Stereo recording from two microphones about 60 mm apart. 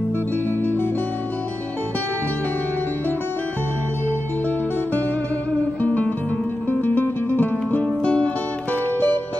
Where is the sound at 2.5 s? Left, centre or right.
Left.